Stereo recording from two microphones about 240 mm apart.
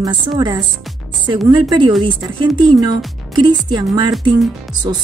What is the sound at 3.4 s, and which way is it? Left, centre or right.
Speech, centre.